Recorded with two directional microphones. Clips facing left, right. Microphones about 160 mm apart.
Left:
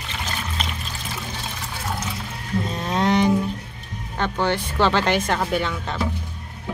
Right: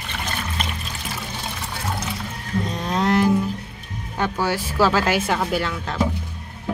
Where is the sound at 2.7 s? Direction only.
Centre (ahead or behind).